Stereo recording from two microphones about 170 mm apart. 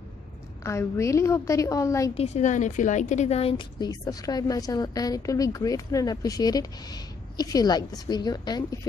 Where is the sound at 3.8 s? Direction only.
20° left (ahead or behind).